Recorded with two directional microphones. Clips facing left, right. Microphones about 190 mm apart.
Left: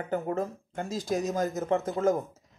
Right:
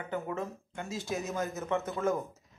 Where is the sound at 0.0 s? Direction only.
35° left (ahead or behind).